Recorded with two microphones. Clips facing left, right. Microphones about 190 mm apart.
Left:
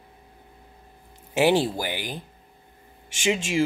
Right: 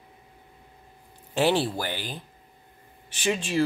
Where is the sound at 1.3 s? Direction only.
15° left (ahead or behind).